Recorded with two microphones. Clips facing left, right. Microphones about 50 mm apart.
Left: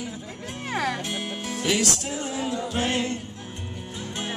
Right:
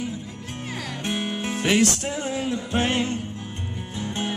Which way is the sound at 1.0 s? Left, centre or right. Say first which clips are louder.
Right 4 dB; right.